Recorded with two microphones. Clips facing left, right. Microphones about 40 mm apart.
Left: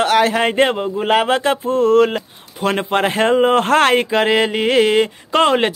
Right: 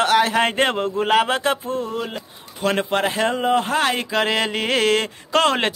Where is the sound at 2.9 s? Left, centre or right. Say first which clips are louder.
Left 5 dB; left.